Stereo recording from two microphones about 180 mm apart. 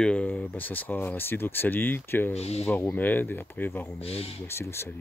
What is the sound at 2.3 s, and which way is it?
Speech, 35° left (ahead or behind).